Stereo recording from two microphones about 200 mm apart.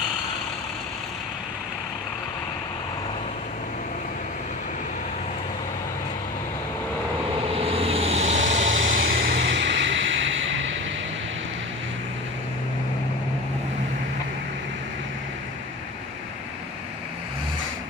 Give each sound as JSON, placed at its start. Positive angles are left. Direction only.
{"t": 7.6, "sound": "vehicle", "side_deg": -30}
{"t": 8.5, "sound": "vehicle", "side_deg": -70}
{"t": 9.1, "sound": "music", "side_deg": -55}